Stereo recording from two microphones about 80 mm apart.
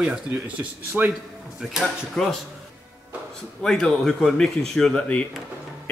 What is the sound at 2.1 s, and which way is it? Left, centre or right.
Speech, centre.